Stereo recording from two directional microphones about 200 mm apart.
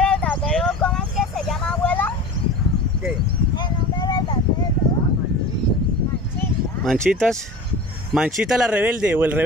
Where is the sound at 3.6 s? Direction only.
20° left (ahead or behind).